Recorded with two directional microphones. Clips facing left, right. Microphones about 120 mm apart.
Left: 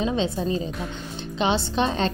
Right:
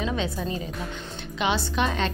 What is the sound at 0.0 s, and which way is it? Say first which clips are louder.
Speech: left 4 dB; 25° left (ahead or behind).